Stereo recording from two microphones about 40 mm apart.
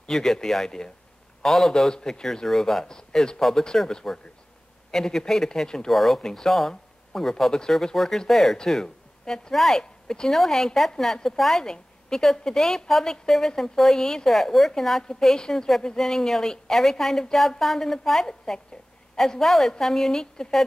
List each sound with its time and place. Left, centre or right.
0.1 s a woman's voice: centre
3.3 s a woman's voice: centre
5.9 s a woman's voice: centre
8.5 s a woman's voice: centre